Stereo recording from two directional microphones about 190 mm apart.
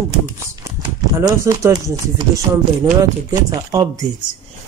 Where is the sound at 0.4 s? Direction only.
15° right (ahead or behind).